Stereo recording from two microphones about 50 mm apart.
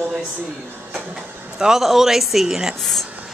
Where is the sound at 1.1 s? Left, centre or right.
Centre.